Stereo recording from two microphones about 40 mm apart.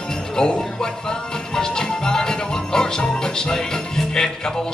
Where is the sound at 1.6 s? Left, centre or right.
Centre.